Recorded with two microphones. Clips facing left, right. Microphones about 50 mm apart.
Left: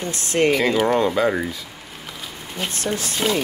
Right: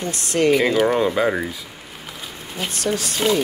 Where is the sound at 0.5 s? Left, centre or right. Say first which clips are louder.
Right 3 dB; centre.